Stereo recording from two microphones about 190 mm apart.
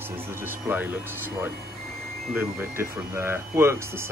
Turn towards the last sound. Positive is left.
turn(degrees=-15)  # may be behind; listen again after turning